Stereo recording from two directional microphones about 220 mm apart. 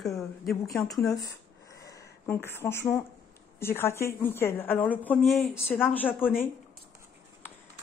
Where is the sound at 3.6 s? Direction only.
10° left (ahead or behind).